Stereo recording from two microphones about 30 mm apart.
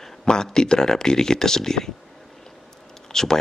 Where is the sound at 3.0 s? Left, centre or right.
Centre.